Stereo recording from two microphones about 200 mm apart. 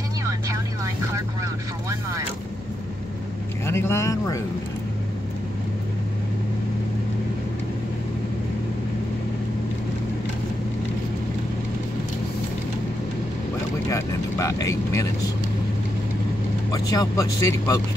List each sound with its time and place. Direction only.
1.4 s vehicle: 15° right (ahead or behind)
3.6 s speech: 15° left (ahead or behind)
13.8 s vehicle: 15° left (ahead or behind)
16.7 s speech: 15° left (ahead or behind)